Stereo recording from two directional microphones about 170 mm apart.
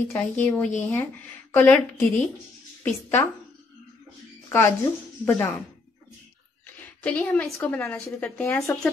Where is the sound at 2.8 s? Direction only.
15° left (ahead or behind).